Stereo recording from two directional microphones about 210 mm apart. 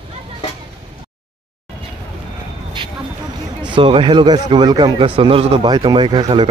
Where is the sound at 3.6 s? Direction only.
25° right (ahead or behind).